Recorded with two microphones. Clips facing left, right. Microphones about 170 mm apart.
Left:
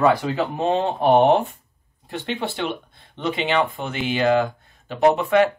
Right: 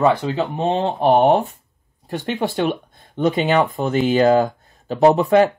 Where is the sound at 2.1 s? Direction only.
45° right (ahead or behind).